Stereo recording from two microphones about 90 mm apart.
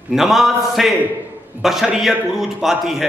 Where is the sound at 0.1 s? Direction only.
Centre (ahead or behind).